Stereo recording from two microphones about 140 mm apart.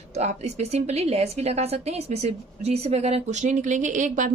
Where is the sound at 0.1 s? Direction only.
55° right (ahead or behind).